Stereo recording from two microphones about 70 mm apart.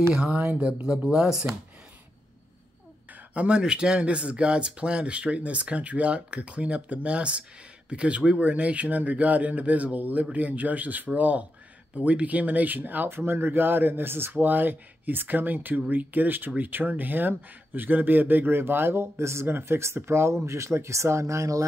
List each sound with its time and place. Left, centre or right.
0.3 s speech: centre
3.1 s speech: centre; by 21.6 s right